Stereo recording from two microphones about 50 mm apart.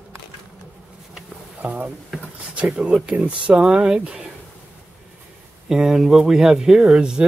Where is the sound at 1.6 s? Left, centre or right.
Right.